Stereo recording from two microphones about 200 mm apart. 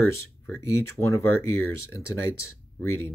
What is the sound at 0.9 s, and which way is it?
Speech, 15° left (ahead or behind).